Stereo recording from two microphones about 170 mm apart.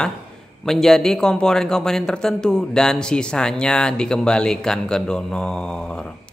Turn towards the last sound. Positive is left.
turn(degrees=5)  # may be behind; listen again after turning